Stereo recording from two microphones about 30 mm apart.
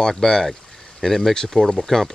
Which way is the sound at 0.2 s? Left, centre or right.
Centre.